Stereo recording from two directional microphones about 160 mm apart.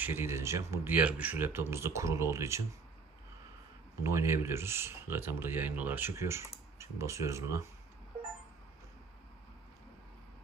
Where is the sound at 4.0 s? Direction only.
15° right (ahead or behind).